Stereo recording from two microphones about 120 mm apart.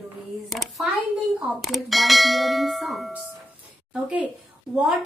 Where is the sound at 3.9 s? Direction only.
5° right (ahead or behind).